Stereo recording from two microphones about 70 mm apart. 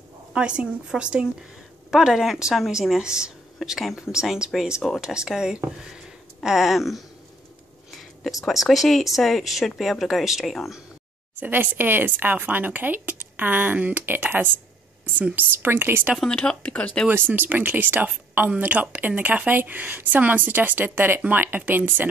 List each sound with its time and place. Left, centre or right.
0.3 s speech: centre
8.2 s speech: centre
11.3 s a woman's voice: right
16.3 s speech: centre
17.1 s a woman's voice: right